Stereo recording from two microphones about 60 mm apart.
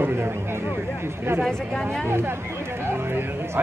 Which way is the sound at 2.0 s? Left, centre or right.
Right.